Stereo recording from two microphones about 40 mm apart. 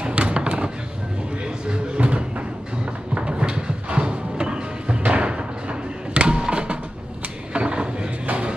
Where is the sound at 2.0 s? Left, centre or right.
Right.